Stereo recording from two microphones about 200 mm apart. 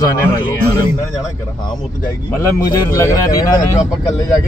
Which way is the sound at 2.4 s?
15° left (ahead or behind).